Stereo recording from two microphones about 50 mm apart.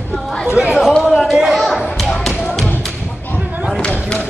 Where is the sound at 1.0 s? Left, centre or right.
Centre.